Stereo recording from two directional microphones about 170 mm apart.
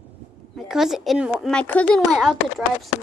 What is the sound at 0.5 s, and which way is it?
Speech, centre (ahead or behind).